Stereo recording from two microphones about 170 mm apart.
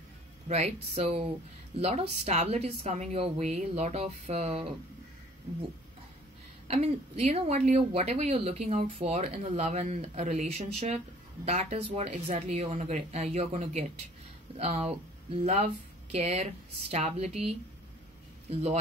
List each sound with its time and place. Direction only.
0.5 s speech: 40° right (ahead or behind)
6.7 s speech: 40° right (ahead or behind)
18.5 s speech: 40° right (ahead or behind)